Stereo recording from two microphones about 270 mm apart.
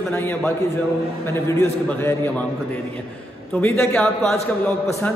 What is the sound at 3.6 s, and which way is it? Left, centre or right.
A man's voice, centre.